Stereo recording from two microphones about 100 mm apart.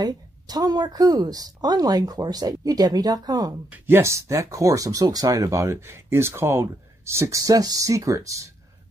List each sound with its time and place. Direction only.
0.0 s speech: 40° right (ahead or behind)
3.7 s speech: 20° right (ahead or behind)